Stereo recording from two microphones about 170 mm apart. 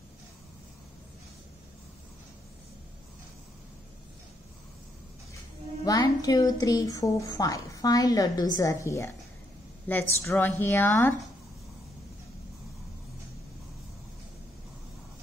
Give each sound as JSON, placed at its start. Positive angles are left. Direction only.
{"t": 5.9, "sound": "speech", "side_deg": 20}